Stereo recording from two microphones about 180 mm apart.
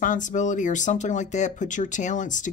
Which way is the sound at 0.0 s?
45° left (ahead or behind).